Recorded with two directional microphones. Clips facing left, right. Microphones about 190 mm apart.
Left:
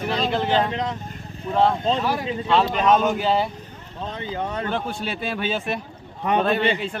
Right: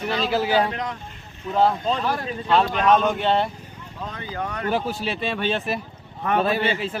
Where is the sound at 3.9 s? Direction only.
20° left (ahead or behind).